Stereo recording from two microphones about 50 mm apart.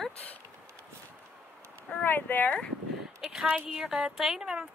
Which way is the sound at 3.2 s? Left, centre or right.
Centre.